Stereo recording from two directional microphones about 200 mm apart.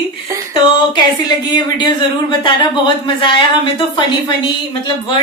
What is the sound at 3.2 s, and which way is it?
Speech, 25° left (ahead or behind).